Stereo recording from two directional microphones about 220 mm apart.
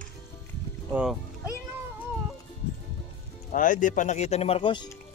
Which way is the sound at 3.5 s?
35° left (ahead or behind).